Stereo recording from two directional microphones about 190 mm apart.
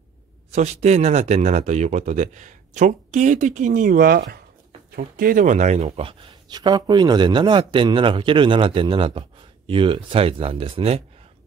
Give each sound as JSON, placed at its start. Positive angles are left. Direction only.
{"t": 0.5, "sound": "speech", "side_deg": -35}